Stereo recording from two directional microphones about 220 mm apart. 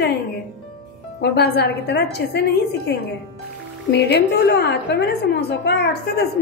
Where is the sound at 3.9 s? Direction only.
50° left (ahead or behind).